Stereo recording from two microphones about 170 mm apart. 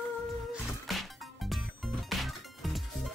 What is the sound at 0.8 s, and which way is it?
Music, centre (ahead or behind).